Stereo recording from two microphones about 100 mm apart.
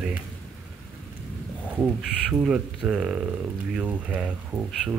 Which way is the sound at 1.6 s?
10° right (ahead or behind).